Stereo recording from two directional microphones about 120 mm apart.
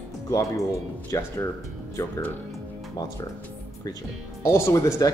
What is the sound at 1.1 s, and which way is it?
Speech, 25° left (ahead or behind).